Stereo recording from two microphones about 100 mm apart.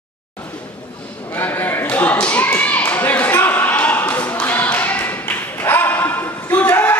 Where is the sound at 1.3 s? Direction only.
20° left (ahead or behind).